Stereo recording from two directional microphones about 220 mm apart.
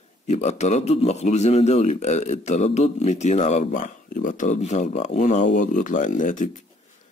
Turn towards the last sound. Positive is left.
turn(degrees=35)  # may be behind; listen again after turning